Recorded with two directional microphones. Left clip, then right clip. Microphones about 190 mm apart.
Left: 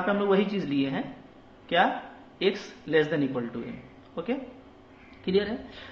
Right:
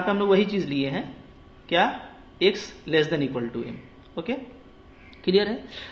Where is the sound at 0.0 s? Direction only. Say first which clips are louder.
Right 3 dB; 30° right (ahead or behind).